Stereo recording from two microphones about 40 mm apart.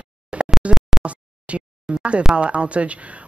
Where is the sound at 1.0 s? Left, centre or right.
Right.